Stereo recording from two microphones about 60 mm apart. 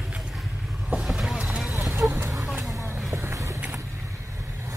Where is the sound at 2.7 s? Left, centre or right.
Right.